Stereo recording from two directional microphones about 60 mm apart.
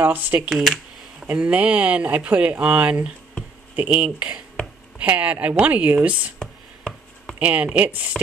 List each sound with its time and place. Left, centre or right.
0.0 s speech: right
0.4 s speech: centre
1.2 s speech: right
6.4 s a sound: centre
7.3 s speech: right